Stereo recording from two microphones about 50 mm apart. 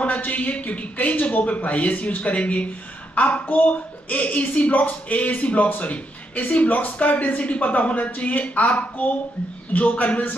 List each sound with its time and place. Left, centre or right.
0.0 s a man's voice: left